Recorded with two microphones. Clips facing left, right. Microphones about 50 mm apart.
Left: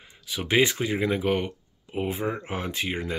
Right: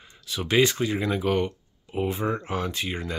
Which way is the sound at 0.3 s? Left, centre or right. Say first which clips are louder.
Right 1 dB; left.